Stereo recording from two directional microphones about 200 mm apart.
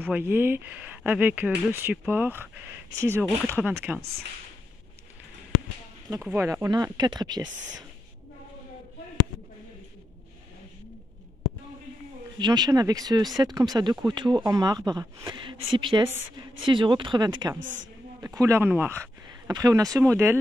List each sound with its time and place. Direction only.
0.0 s speech: 10° right (ahead or behind)
6.0 s speech: 15° right (ahead or behind)
12.4 s speech: 20° right (ahead or behind)